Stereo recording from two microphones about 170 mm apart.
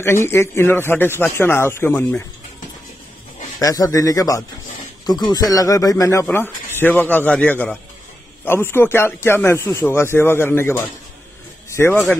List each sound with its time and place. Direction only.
0.0 s speech: 15° left (ahead or behind)
3.5 s a man's voice: 20° left (ahead or behind)